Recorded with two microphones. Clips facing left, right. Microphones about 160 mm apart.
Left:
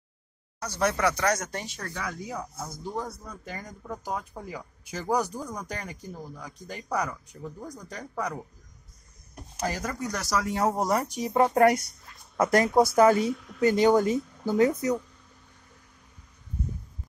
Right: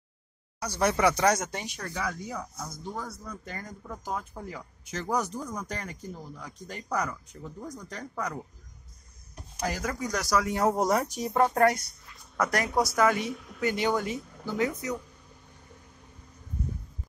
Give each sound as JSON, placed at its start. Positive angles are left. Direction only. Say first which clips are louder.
{"t": 0.6, "sound": "speech", "louder": "even", "side_deg": 0}
{"t": 0.9, "sound": "speech", "louder": "right 2 dB", "side_deg": -20}
{"t": 2.0, "sound": "speech", "louder": "right 1 dB", "side_deg": 0}
{"t": 9.8, "sound": "speech", "louder": "right 1 dB", "side_deg": -5}